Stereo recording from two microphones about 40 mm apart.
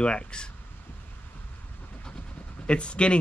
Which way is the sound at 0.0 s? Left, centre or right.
Left.